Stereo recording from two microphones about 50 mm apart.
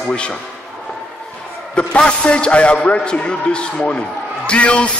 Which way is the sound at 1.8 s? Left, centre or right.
Left.